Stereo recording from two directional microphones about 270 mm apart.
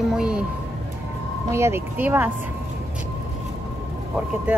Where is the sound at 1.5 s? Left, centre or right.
Centre.